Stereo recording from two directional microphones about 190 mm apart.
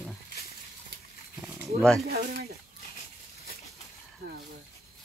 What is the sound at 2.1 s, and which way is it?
Speech, 55° right (ahead or behind).